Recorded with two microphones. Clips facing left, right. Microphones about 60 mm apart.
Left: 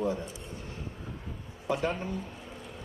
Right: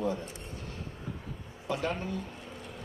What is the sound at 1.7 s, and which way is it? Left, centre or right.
Speech, left.